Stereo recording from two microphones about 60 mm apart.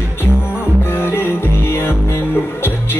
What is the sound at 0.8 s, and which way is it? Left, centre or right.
Music, left.